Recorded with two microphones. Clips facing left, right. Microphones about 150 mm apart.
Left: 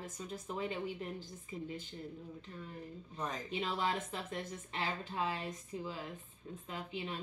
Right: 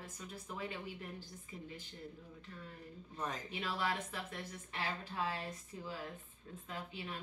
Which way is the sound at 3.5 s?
20° left (ahead or behind).